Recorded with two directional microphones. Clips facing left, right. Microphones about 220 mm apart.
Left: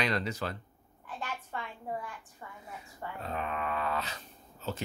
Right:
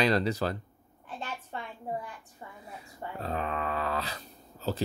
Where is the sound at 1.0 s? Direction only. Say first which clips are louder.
Right 1 dB; 25° right (ahead or behind).